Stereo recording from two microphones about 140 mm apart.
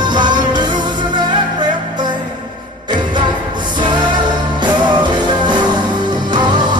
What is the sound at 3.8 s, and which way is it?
Music, 35° right (ahead or behind).